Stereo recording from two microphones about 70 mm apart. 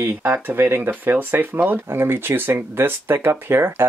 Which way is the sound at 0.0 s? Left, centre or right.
Right.